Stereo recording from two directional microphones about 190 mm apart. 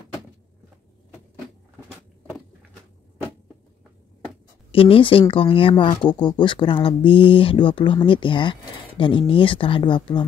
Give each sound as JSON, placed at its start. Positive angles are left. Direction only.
{"t": 4.6, "sound": "speech", "side_deg": 30}